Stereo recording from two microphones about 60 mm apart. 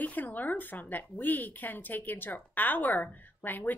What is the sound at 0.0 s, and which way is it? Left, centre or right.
Speech, left.